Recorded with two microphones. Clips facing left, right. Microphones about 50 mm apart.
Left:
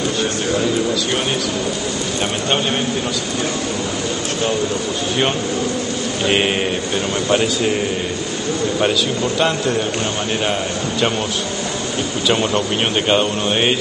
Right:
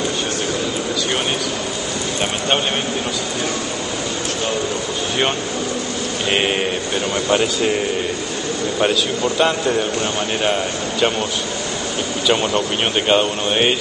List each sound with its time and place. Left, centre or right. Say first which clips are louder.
6.2 s speech: left 1 dB; centre
8.7 s speech: right 1 dB; centre
12.3 s speech: even; centre